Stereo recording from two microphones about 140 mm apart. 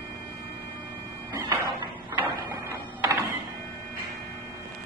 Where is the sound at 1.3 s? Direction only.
25° right (ahead or behind).